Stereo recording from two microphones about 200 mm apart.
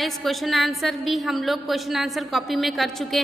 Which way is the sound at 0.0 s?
Centre (ahead or behind).